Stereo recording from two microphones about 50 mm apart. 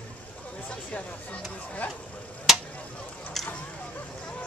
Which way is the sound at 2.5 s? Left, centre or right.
Centre.